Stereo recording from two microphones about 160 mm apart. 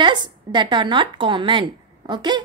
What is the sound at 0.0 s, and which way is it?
A woman's voice, 30° right (ahead or behind).